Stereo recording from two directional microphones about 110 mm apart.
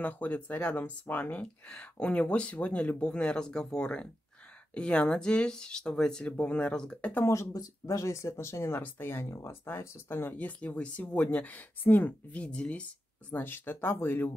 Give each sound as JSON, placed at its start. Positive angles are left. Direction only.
{"t": 0.0, "sound": "speech", "side_deg": 15}
{"t": 7.2, "sound": "speech", "side_deg": 30}